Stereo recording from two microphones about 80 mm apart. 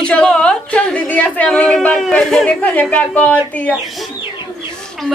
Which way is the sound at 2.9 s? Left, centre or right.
Centre.